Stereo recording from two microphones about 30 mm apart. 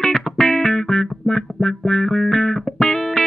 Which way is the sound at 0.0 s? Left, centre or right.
Left.